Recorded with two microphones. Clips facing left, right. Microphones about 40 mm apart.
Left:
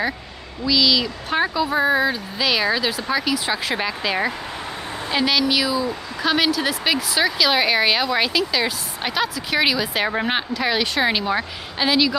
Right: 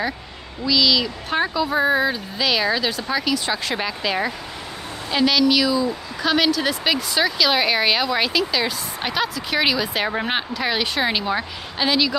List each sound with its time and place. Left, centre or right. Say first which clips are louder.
0.7 s a woman's voice: even; centre